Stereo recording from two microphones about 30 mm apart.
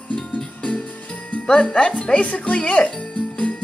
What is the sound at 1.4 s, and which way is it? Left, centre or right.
Speech, left.